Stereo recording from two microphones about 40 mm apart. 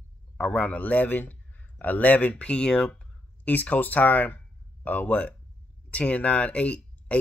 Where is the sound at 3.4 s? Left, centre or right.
Left.